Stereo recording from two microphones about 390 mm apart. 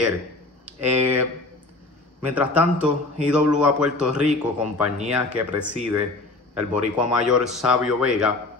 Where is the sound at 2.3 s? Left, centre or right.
Centre.